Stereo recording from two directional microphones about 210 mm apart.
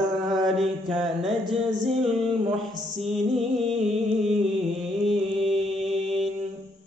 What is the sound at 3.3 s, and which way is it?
Music, centre (ahead or behind).